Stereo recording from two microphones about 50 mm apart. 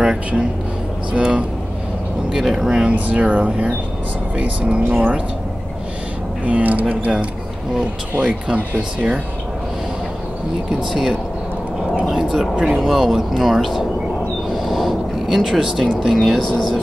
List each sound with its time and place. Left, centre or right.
0.0 s a sound: centre
1.1 s speech: right
2.3 s speech: centre
2.9 s speech: right
6.4 s speech: right
8.2 s speech: right
10.9 s speech: centre